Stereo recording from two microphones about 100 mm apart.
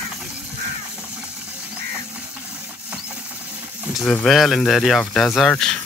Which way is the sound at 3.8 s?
Centre (ahead or behind).